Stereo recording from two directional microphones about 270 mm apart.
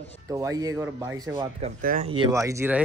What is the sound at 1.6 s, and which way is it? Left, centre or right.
Speech, right.